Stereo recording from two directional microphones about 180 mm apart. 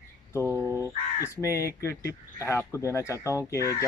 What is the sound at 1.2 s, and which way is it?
Speech, 15° left (ahead or behind).